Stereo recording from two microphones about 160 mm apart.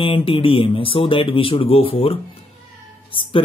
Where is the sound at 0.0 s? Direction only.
35° left (ahead or behind).